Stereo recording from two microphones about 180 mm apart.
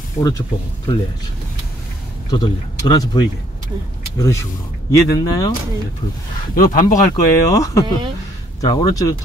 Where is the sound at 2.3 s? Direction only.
20° left (ahead or behind).